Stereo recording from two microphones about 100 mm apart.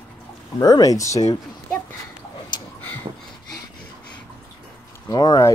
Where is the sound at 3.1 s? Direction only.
60° right (ahead or behind).